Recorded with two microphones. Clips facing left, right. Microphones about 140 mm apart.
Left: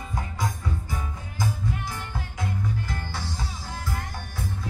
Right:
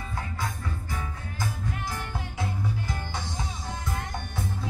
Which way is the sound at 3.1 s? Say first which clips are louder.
Even; 20° right (ahead or behind).